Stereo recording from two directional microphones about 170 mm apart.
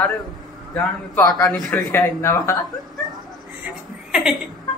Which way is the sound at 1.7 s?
15° left (ahead or behind).